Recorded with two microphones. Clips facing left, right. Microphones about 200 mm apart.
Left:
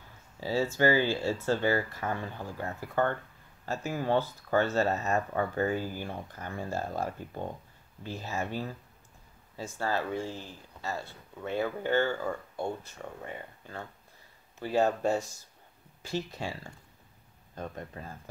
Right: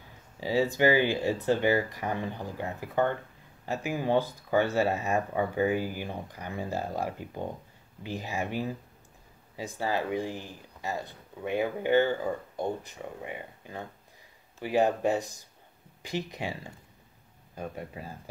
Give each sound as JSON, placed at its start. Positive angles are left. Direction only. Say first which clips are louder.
{"t": 0.4, "sound": "speech", "louder": "right 2 dB", "side_deg": -15}